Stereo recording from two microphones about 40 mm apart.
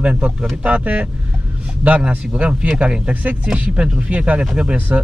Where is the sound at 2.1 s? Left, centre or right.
Right.